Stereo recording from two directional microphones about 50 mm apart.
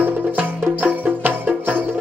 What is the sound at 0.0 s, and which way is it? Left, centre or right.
Music, right.